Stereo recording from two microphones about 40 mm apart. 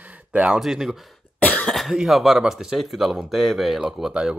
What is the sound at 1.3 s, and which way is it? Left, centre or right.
Cough, left.